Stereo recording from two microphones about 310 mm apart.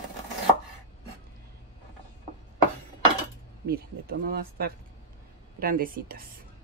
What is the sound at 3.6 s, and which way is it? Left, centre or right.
Speech, right.